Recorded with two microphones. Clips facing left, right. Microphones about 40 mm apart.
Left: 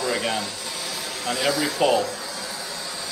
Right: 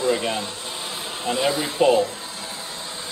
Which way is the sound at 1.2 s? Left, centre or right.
Right.